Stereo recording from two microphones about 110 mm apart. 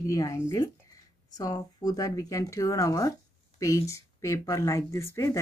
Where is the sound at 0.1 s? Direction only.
30° left (ahead or behind).